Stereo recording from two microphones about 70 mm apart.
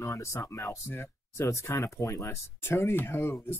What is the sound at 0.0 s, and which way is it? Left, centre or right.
Speech, left.